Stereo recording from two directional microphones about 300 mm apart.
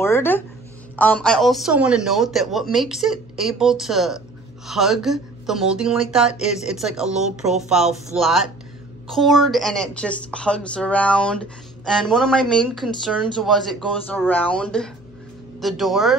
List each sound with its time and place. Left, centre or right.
0.0 s a sound: centre
0.9 s a woman's voice: centre
6.3 s speech: left
6.7 s a woman's voice: centre